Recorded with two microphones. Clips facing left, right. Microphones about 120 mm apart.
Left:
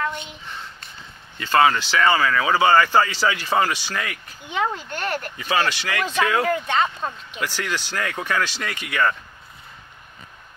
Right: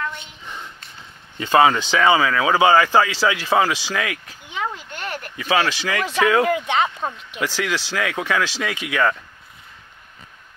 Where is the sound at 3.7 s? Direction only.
90° right.